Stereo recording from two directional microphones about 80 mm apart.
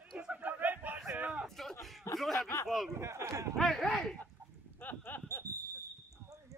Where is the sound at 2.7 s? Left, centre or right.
Centre.